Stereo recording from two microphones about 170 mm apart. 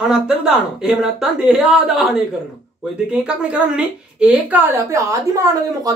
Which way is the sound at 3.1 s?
5° right (ahead or behind).